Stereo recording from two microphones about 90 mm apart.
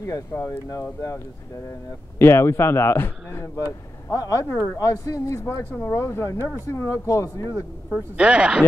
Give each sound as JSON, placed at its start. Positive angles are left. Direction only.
{"t": 0.3, "sound": "speech", "side_deg": 25}
{"t": 2.1, "sound": "speech", "side_deg": 30}
{"t": 7.9, "sound": "speech", "side_deg": -10}